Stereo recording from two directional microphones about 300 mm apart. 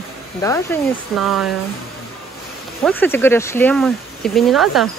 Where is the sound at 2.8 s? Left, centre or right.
Centre.